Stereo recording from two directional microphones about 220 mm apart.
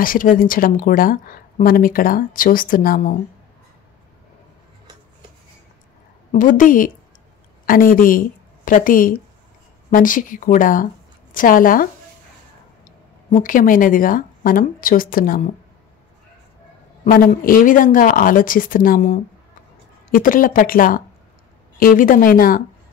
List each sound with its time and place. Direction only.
0.0 s speech: 40° left (ahead or behind)
6.3 s speech: 35° left (ahead or behind)
13.3 s speech: 40° left (ahead or behind)
17.0 s speech: 35° left (ahead or behind)